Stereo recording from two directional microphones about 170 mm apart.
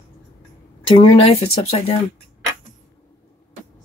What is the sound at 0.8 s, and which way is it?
A woman's voice, 35° left (ahead or behind).